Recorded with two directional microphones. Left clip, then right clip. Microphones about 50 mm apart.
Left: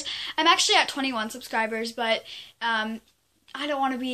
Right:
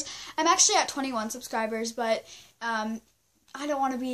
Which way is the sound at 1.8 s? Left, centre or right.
Right.